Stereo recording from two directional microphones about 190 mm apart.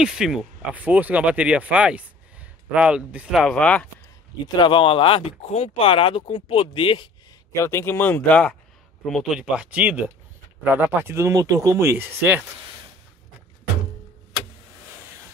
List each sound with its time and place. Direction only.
0.0 s speech: 5° right (ahead or behind)
4.6 s speech: 25° left (ahead or behind)
7.5 s speech: 15° left (ahead or behind); by 12.4 s 10° right (ahead or behind)